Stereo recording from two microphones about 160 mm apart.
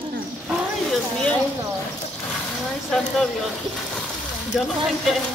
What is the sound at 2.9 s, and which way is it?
Speech, centre (ahead or behind).